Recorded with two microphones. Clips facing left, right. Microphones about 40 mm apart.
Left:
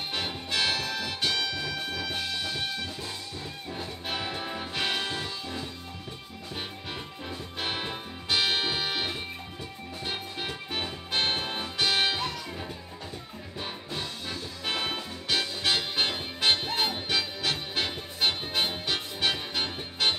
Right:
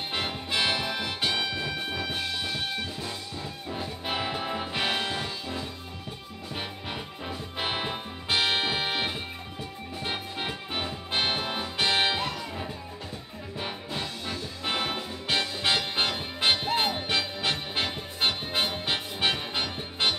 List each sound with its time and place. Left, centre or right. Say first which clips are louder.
0.1 s music: right 2 dB; centre